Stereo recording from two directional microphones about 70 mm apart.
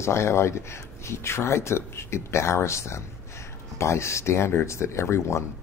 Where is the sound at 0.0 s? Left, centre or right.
Left.